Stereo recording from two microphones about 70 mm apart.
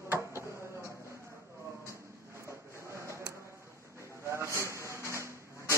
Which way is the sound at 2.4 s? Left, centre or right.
Right.